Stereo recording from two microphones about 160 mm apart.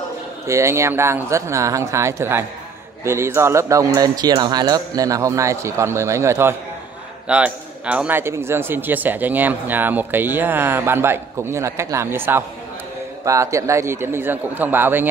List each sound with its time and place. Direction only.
0.5 s a man's voice: 15° right (ahead or behind)